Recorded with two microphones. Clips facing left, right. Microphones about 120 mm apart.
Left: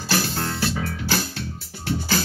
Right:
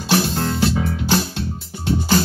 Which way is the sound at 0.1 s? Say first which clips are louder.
Right 6 dB; 20° right (ahead or behind).